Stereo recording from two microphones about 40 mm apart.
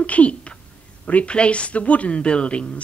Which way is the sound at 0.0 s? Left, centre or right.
Left.